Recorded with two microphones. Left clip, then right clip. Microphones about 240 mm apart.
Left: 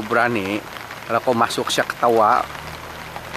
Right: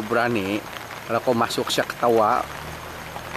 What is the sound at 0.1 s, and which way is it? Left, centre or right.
Speech, centre.